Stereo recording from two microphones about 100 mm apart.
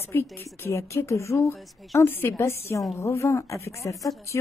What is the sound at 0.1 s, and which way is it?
Speech, 25° left (ahead or behind).